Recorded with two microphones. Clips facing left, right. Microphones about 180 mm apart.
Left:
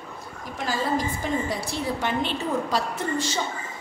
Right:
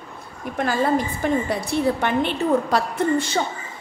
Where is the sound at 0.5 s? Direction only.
60° right (ahead or behind).